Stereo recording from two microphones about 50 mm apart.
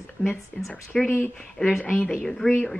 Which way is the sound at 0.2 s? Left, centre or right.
Left.